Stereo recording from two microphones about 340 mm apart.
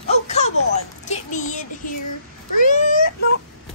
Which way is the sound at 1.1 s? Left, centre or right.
Left.